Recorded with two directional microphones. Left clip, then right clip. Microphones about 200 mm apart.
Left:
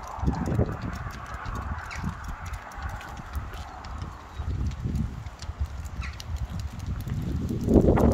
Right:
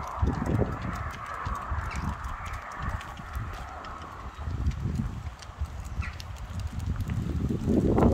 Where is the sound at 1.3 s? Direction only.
20° right (ahead or behind).